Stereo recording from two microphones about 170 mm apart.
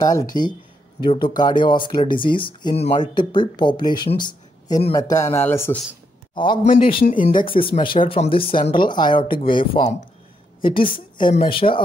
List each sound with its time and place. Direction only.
0.0 s speech: 20° left (ahead or behind)
4.1 s a sound: 25° left (ahead or behind)
4.9 s speech: 20° left (ahead or behind)
6.3 s a man's voice: 30° left (ahead or behind)